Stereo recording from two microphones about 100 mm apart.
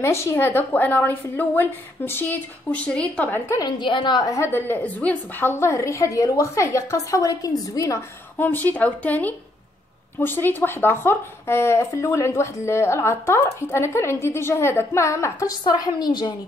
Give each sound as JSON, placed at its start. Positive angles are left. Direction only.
{"t": 0.0, "sound": "speech", "side_deg": 25}
{"t": 3.5, "sound": "a woman's voice", "side_deg": 45}
{"t": 4.3, "sound": "a woman's voice", "side_deg": 25}
{"t": 8.4, "sound": "speech", "side_deg": 20}
{"t": 15.6, "sound": "a woman's voice", "side_deg": 45}